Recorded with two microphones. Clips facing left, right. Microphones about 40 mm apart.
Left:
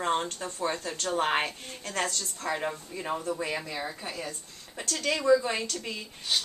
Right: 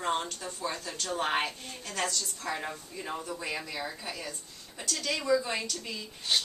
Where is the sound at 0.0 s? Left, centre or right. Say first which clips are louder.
Left 3 dB; left.